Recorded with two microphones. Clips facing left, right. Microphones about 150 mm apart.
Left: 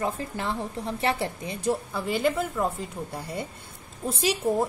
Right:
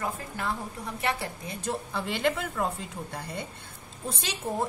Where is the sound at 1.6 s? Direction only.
Centre (ahead or behind).